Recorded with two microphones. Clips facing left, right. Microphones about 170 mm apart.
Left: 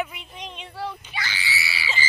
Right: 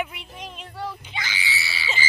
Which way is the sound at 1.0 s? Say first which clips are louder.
Even; 15° right (ahead or behind).